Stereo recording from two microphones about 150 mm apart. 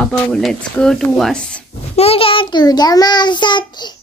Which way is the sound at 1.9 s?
40° left (ahead or behind).